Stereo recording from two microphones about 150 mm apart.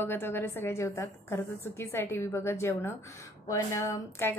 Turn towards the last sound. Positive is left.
turn(degrees=15)  # may be behind; listen again after turning